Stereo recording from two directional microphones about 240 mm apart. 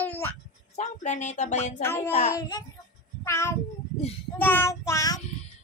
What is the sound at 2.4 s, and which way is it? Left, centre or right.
Child singing, centre.